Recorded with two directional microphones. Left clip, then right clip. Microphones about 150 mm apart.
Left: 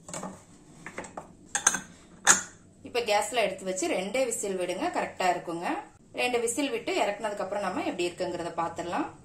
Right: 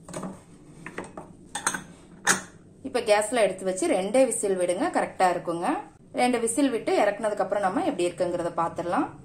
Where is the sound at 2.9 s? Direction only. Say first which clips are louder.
Right 4 dB; 35° right (ahead or behind).